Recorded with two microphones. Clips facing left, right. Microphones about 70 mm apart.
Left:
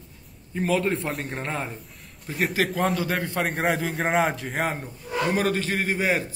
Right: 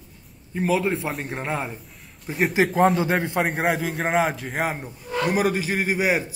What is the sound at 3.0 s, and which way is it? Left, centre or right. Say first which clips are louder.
Speech: right 4 dB; right.